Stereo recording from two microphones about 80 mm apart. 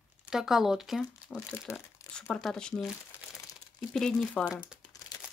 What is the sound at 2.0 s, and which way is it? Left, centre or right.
Crumpling, left.